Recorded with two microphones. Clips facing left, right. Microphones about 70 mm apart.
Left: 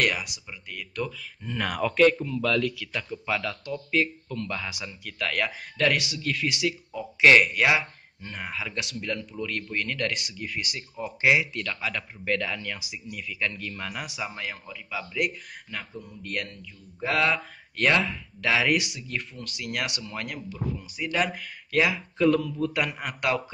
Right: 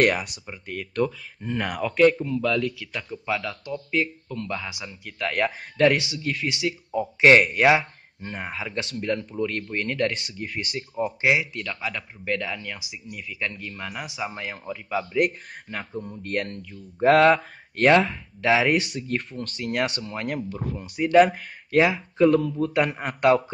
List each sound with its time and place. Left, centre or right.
0.0 s speech: right
1.1 s speech: right
1.6 s speech: centre
14.9 s speech: right
16.5 s speech: right
17.2 s speech: right
18.9 s speech: right
20.2 s speech: right
21.1 s speech: right